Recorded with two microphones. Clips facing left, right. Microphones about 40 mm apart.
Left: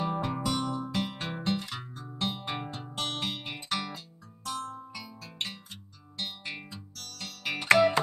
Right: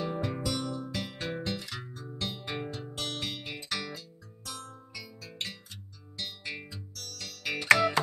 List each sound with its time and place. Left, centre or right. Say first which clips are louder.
0.0 s music: left 2 dB; centre